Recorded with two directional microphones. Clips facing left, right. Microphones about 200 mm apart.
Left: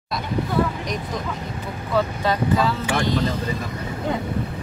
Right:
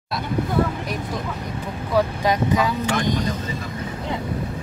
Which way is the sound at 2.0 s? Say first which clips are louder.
Right 2 dB; 15° right (ahead or behind).